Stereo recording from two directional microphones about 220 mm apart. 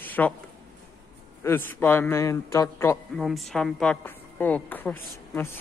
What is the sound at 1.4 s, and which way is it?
A woman's voice, 10° left (ahead or behind).